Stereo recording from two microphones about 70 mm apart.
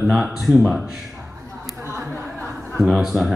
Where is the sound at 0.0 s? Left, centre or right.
Centre.